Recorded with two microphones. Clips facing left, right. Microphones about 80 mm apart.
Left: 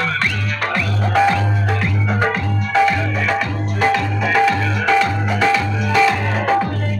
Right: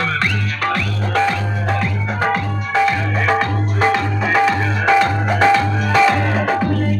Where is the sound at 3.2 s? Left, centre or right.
Right.